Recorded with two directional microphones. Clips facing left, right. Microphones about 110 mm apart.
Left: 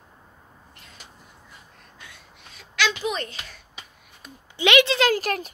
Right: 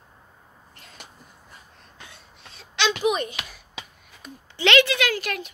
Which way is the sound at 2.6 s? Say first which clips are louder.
Even; 25° right (ahead or behind).